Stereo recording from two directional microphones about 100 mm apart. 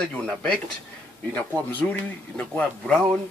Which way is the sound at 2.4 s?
10° left (ahead or behind).